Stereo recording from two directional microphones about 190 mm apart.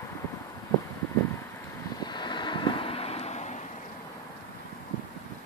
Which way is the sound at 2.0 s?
25° left (ahead or behind).